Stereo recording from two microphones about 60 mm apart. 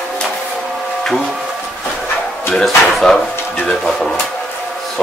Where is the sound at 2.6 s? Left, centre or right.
Centre.